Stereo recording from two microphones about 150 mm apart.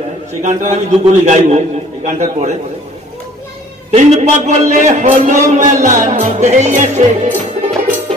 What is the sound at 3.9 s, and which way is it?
Speech, 50° right (ahead or behind).